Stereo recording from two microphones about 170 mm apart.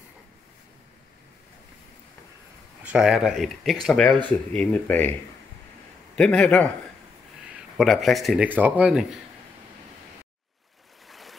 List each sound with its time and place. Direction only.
2.8 s speech: 5° right (ahead or behind); by 5.1 s 10° left (ahead or behind)
6.1 s speech: 5° left (ahead or behind)
7.7 s speech: centre (ahead or behind)
8.5 s speech: 10° right (ahead or behind)
11.1 s waves: centre (ahead or behind)